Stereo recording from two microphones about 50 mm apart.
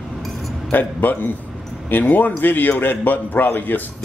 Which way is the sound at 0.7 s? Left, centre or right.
Left.